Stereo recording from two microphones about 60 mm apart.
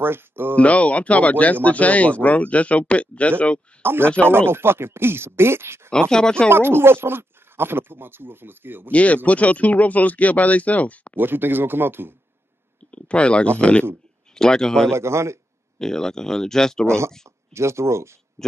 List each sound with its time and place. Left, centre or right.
0.0 s speech: right
0.6 s speech: left
3.8 s speech: right
5.9 s speech: centre
6.5 s speech: right
8.9 s speech: left
11.1 s speech: right
12.9 s speech: centre
14.9 s speech: right
15.8 s speech: centre
16.8 s speech: right
18.4 s speech: centre